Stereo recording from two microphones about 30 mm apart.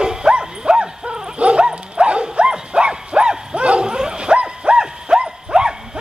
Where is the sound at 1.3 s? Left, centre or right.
Right.